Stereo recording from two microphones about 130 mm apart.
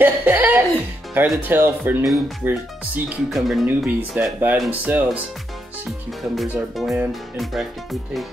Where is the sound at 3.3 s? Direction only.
Centre (ahead or behind).